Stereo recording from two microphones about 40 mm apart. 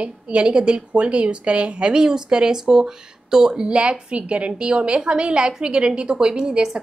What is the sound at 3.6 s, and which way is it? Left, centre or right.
Speech, right.